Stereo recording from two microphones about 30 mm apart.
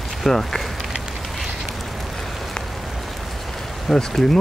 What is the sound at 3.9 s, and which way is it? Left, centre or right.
Speech, centre.